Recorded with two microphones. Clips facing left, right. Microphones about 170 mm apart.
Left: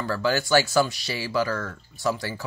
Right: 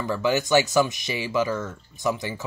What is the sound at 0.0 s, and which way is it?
Speech, 20° right (ahead or behind).